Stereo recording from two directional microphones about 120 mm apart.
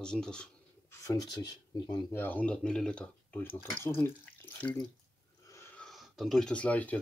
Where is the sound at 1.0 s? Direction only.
35° left (ahead or behind).